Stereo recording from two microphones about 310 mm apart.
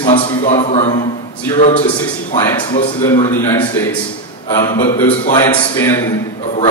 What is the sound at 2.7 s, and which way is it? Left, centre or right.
A man's voice, centre.